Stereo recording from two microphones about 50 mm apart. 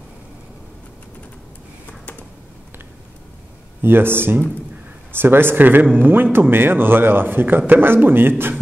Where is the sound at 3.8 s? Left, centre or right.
Right.